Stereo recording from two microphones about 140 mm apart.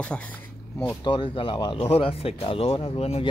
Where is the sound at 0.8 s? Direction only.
30° left (ahead or behind).